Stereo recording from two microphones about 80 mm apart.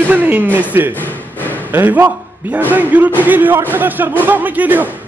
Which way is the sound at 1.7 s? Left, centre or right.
Right.